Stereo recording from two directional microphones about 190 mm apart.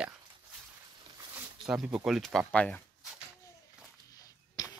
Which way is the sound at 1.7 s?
5° right (ahead or behind).